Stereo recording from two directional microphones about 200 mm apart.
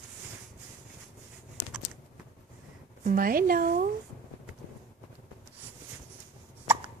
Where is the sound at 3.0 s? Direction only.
45° right (ahead or behind).